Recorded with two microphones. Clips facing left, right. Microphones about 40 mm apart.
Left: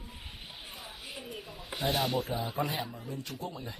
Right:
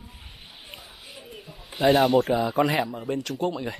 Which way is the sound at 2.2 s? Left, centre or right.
Right.